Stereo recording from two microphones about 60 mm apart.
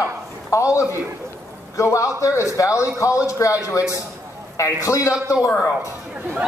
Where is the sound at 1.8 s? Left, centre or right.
Left.